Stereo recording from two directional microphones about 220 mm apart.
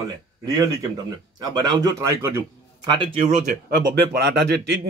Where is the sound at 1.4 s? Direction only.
15° right (ahead or behind).